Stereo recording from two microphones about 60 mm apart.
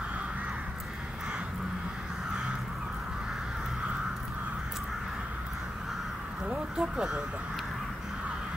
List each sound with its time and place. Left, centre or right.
6.4 s speech: centre